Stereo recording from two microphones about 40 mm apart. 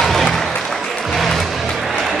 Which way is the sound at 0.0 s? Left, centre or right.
Centre.